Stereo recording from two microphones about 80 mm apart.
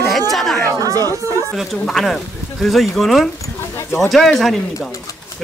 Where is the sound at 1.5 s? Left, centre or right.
Centre.